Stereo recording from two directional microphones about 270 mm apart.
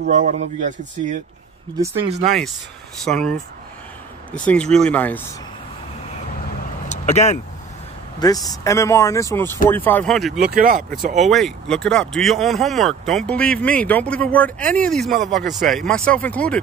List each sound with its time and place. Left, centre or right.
0.0 s speech: right
2.2 s speech: centre
6.9 s vehicle: left
8.2 s speech: centre
10.4 s speech: right
11.1 s speech: centre